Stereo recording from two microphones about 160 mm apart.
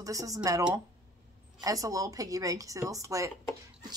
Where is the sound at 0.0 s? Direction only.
20° right (ahead or behind).